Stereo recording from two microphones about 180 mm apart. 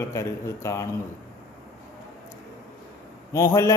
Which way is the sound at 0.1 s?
15° left (ahead or behind).